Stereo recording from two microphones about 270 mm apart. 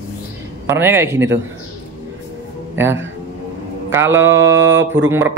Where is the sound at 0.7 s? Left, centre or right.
Centre.